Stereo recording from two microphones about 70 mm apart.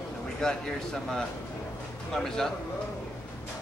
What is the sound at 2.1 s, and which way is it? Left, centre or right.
Speech, centre.